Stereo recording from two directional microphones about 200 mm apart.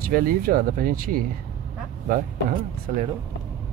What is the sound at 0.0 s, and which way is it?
Speech, 45° right (ahead or behind).